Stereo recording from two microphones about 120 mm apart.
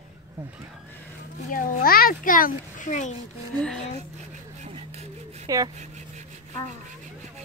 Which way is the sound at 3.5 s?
5° left (ahead or behind).